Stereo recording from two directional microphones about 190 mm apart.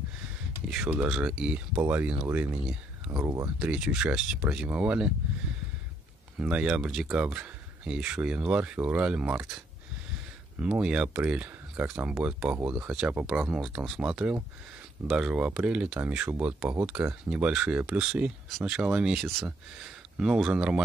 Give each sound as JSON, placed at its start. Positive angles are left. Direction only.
{"t": 0.7, "sound": "speech", "side_deg": -5}
{"t": 3.5, "sound": "speech", "side_deg": -5}
{"t": 6.4, "sound": "speech", "side_deg": -5}
{"t": 10.6, "sound": "speech", "side_deg": -5}